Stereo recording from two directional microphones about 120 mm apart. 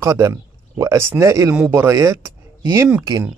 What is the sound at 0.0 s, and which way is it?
Speech, 25° right (ahead or behind).